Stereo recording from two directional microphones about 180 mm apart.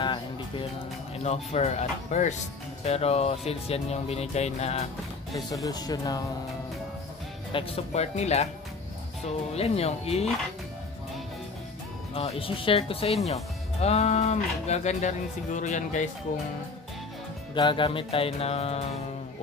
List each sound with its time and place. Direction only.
0.0 s music: 25° left (ahead or behind)
1.2 s speech: 35° left (ahead or behind)
5.5 s speech: 20° left (ahead or behind)
7.5 s speech: 35° left (ahead or behind)
9.6 s speech: 35° left (ahead or behind)
12.1 s speech: 30° left (ahead or behind)
17.6 s speech: 25° left (ahead or behind)